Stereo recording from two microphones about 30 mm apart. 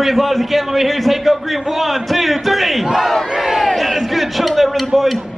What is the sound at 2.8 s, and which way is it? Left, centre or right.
Crowd, centre.